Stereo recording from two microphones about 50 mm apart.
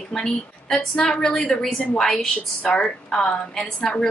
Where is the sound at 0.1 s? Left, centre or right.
Centre.